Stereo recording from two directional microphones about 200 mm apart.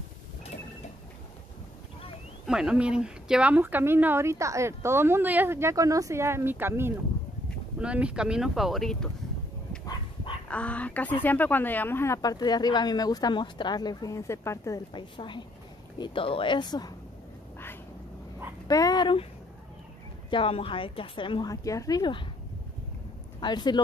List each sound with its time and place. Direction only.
2.4 s speech: 5° right (ahead or behind)
10.5 s speech: 5° left (ahead or behind)
18.7 s speech: 20° left (ahead or behind)
20.2 s speech: 25° left (ahead or behind)
23.4 s speech: 20° left (ahead or behind)